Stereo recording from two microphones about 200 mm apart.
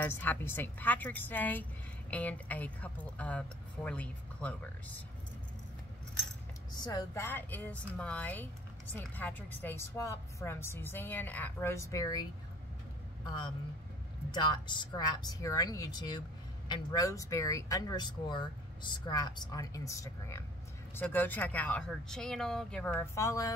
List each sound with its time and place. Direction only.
0.0 s a woman's voice: 10° left (ahead or behind)
6.8 s a woman's voice: 15° left (ahead or behind)